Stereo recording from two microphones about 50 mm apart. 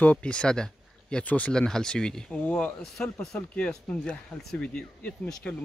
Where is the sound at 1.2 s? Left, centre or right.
Left.